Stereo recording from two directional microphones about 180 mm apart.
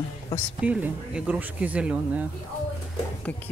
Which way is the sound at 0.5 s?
5° right (ahead or behind).